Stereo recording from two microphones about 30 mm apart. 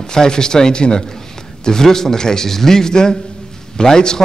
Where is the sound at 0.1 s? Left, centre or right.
Left.